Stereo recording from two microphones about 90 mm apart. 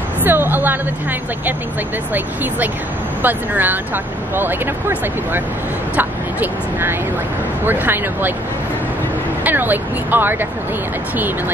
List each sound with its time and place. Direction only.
0.2 s speech: 20° right (ahead or behind)
3.2 s speech: 20° right (ahead or behind)
9.4 s speech: 20° right (ahead or behind)